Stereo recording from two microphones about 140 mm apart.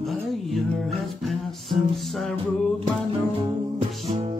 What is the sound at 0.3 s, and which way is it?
Music, centre (ahead or behind).